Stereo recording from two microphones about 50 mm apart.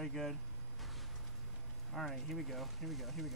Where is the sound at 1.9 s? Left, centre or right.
Centre.